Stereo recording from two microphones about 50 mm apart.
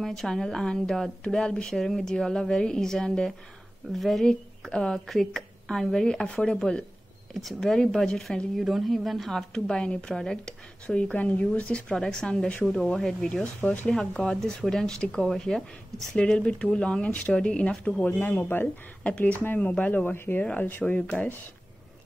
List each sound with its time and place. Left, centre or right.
0.0 s a woman's voice: centre
4.3 s a woman's voice: centre
9.5 s a woman's voice: centre
11.0 s a woman's voice: left; by 16.1 s centre
16.2 s speech: left
18.0 s speech: left
19.0 s speech: left
20.8 s speech: left